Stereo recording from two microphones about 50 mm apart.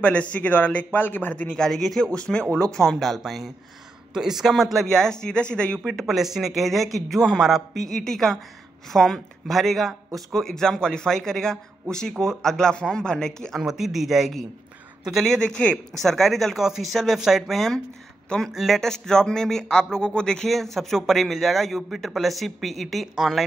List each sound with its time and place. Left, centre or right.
0.0 s a man's voice: left
1.5 s speech: centre
2.0 s speech: centre
2.8 s a man's voice: centre
4.9 s speech: centre
6.0 s a man's voice: centre
7.2 s a man's voice: centre
7.7 s speech: centre
13.6 s a man's voice: centre
15.2 s speech: centre
16.5 s a man's voice: centre
18.8 s speech: centre
20.4 s a man's voice: centre